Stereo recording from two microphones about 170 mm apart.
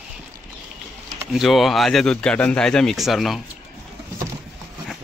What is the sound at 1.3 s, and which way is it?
Speech, centre (ahead or behind).